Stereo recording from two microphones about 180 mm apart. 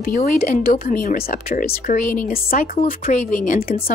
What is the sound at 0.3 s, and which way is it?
Speech, 55° left (ahead or behind).